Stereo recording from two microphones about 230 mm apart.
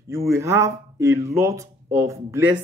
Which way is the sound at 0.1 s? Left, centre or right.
Centre.